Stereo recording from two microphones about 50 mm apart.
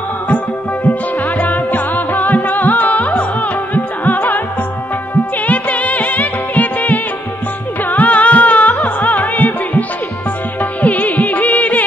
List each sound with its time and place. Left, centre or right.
0.8 s music: left
5.5 s music: left